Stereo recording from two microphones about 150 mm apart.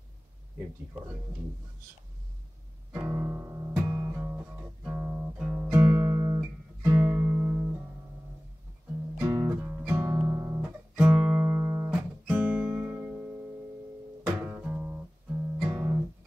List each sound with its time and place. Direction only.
2.9 s music: 15° right (ahead or behind)
9.2 s guitar: 15° right (ahead or behind)
14.2 s music: 15° right (ahead or behind)